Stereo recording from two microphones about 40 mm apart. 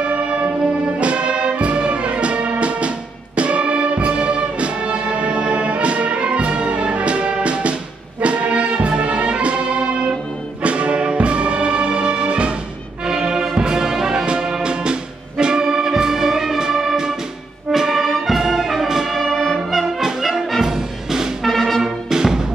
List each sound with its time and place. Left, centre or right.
0.0 s music: right
13.0 s music: centre
17.6 s brass instrument: centre
19.1 s music: centre
20.6 s music: centre
21.5 s music: centre
22.1 s music: centre